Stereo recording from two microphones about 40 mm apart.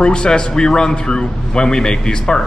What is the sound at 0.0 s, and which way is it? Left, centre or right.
A man's voice, left.